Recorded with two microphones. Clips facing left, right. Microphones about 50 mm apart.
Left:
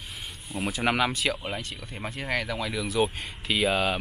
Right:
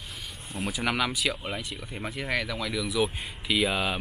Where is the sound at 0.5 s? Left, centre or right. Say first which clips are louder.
Left 3 dB; centre.